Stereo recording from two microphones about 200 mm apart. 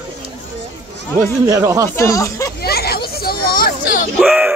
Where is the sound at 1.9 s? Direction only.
15° left (ahead or behind).